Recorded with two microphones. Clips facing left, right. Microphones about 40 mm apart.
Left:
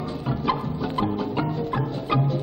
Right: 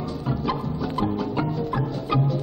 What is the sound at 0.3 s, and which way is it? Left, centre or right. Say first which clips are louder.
Music: left 1 dB; left.